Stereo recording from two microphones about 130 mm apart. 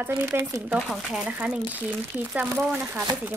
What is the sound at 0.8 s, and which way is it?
Speech, 5° right (ahead or behind).